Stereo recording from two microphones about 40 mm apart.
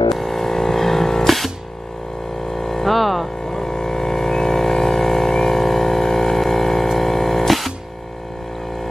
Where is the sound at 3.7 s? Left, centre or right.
Centre.